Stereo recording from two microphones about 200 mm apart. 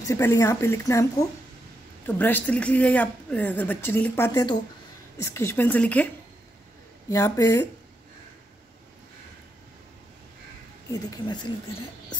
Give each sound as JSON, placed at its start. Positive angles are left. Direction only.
{"t": 0.0, "sound": "a woman's voice", "side_deg": 15}
{"t": 2.0, "sound": "a woman's voice", "side_deg": 10}
{"t": 7.1, "sound": "a woman's voice", "side_deg": 15}
{"t": 10.9, "sound": "speech", "side_deg": 20}